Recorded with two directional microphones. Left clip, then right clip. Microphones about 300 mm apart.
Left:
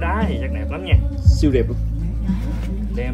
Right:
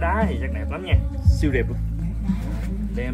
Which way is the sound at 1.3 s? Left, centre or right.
Left.